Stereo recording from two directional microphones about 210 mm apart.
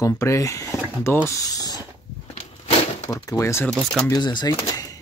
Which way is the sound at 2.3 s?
30° left (ahead or behind).